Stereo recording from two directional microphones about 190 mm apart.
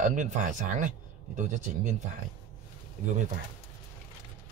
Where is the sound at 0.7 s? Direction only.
40° right (ahead or behind).